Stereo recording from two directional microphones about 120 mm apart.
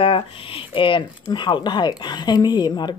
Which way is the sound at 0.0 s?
45° left (ahead or behind).